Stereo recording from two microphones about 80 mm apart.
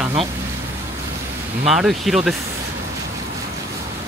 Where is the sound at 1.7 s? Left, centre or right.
Centre.